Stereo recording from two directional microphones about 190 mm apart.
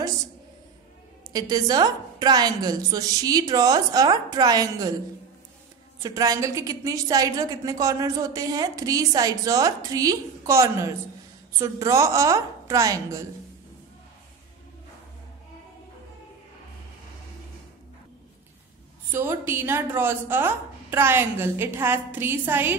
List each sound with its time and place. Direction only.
1.3 s a woman's voice: 20° right (ahead or behind)
6.0 s a woman's voice: 15° right (ahead or behind)
19.1 s a woman's voice: 10° right (ahead or behind)